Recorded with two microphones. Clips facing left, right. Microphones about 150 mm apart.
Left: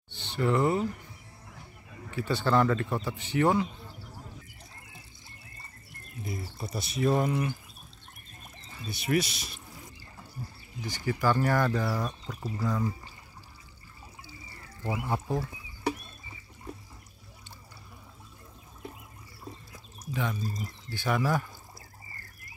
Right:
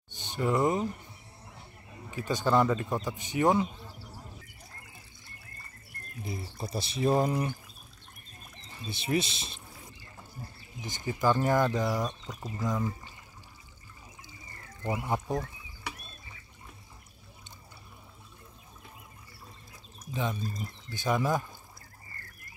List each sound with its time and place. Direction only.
0.1 s speech: 15° right (ahead or behind)
6.2 s speech: 25° right (ahead or behind)
8.8 s speech: 25° right (ahead or behind)
10.8 s speech: 20° right (ahead or behind)
14.9 s speech: 20° right (ahead or behind)
20.1 s pour: 20° right (ahead or behind)
20.6 s speech: 20° right (ahead or behind)